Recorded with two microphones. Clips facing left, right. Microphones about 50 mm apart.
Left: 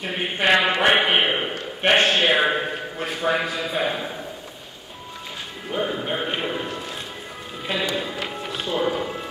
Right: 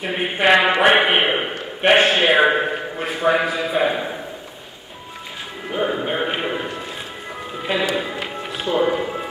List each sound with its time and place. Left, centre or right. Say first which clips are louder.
0.0 s a man's voice: right 4 dB; centre
5.7 s a man's voice: right 3 dB; centre
9.0 s music: right 3 dB; centre